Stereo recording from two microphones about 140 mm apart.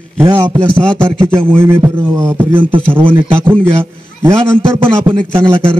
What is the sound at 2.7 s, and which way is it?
Speech, 40° right (ahead or behind).